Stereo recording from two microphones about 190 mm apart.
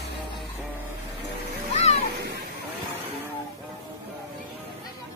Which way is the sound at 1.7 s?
35° left (ahead or behind).